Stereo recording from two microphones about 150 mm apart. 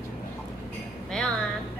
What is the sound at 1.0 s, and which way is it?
Chink, 5° left (ahead or behind).